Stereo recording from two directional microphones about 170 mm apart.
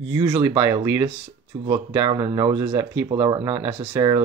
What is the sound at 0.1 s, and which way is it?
Speech, 30° right (ahead or behind).